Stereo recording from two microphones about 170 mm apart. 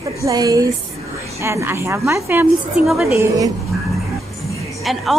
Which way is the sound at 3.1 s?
20° right (ahead or behind).